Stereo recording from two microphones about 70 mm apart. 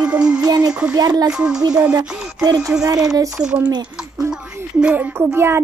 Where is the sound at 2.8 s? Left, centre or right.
Right.